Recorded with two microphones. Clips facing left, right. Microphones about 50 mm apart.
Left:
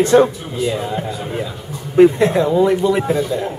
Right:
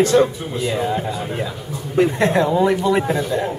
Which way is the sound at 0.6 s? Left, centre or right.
Centre.